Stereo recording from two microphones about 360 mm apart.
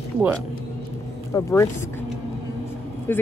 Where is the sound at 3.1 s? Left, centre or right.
Centre.